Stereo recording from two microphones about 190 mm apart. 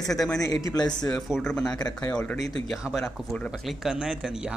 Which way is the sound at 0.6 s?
20° left (ahead or behind).